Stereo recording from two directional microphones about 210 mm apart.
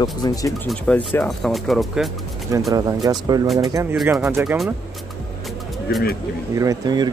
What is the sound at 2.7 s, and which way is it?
Speech, 15° right (ahead or behind).